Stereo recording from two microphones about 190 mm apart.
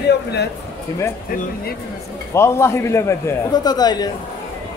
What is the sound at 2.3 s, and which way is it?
A man's voice, 15° left (ahead or behind).